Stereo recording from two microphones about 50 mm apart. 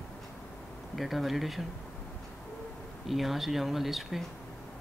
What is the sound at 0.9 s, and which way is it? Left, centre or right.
Speech, centre.